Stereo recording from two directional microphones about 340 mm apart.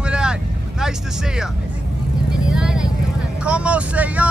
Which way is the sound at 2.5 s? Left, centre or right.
Centre.